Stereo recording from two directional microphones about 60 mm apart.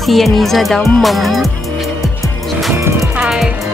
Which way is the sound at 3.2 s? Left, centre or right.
Centre.